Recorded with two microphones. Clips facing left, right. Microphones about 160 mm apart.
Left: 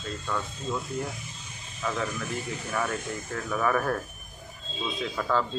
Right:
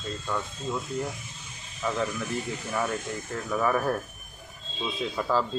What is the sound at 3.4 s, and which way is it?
Speech, 5° right (ahead or behind).